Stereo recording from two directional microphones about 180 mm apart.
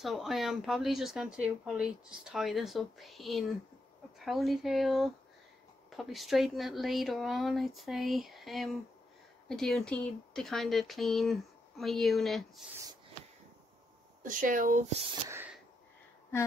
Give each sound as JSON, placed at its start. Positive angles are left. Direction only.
{"t": 0.0, "sound": "speech", "side_deg": 0}
{"t": 14.2, "sound": "speech", "side_deg": -45}
{"t": 15.2, "sound": "snort", "side_deg": -15}